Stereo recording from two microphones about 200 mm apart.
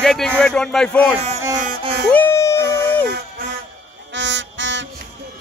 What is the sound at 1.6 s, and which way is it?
Music, 45° right (ahead or behind).